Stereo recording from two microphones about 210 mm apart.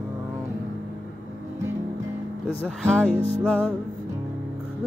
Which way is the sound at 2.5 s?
5° left (ahead or behind).